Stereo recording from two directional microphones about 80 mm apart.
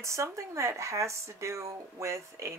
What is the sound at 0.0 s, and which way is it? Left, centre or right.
Speech, right.